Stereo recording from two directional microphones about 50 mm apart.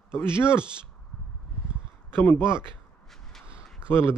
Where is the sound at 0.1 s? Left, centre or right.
Left.